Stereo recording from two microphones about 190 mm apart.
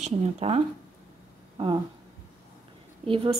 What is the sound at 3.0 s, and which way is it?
Speech, 30° right (ahead or behind).